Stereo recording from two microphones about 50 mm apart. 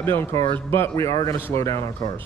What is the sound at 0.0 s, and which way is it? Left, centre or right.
Speech, left.